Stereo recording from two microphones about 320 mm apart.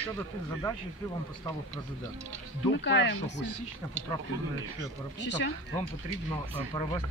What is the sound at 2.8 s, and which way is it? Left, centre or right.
Speech, left.